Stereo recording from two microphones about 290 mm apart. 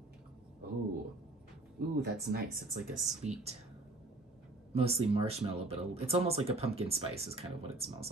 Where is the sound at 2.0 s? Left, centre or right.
Right.